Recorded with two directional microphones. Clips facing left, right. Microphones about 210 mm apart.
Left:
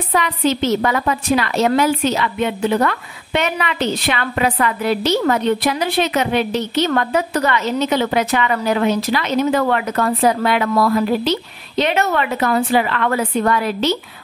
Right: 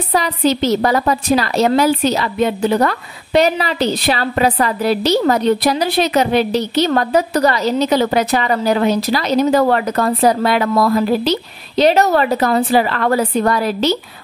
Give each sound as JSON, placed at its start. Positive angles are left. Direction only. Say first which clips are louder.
{"t": 0.1, "sound": "a woman's voice", "louder": "right 2 dB", "side_deg": -35}